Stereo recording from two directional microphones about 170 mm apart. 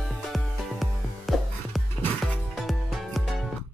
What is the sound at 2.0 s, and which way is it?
Music, 10° left (ahead or behind).